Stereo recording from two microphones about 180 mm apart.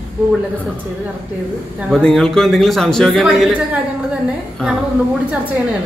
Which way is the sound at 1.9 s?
Centre (ahead or behind).